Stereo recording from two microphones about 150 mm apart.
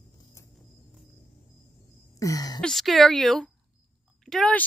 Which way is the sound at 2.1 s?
20° left (ahead or behind).